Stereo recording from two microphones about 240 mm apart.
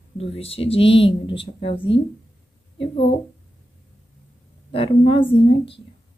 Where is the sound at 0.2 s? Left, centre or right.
Left.